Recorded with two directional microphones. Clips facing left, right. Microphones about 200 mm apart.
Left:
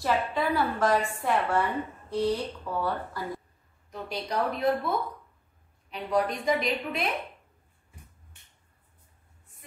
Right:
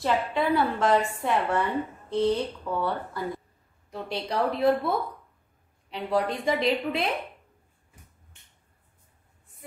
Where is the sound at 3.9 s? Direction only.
30° right (ahead or behind).